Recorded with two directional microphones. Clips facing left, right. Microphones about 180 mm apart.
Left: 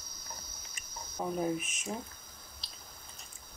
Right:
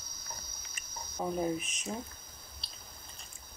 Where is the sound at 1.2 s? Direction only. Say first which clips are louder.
Even; centre (ahead or behind).